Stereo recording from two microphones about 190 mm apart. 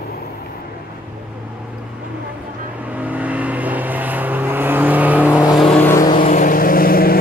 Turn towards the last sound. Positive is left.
turn(degrees=50)  # may be behind; listen again after turning